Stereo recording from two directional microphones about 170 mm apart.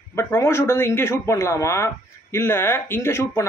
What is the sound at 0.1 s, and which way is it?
Speech, 15° left (ahead or behind).